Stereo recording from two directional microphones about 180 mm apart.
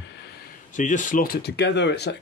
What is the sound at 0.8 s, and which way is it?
Speech, 45° left (ahead or behind).